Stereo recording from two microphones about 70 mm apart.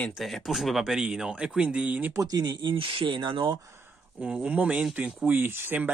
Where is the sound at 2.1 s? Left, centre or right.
Right.